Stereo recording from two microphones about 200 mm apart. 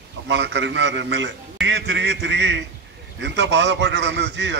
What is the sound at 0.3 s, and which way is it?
A man's voice, 65° right (ahead or behind).